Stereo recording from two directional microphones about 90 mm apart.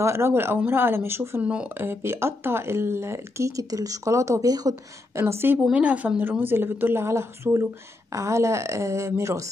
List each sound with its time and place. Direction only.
0.0 s a woman's voice: 30° right (ahead or behind)
1.4 s speech: 15° right (ahead or behind)
1.7 s speech: 25° right (ahead or behind); by 4.7 s 45° right (ahead or behind)
5.1 s a woman's voice: 25° right (ahead or behind)
5.6 s a woman's voice: 15° right (ahead or behind); by 9.5 s 35° right (ahead or behind)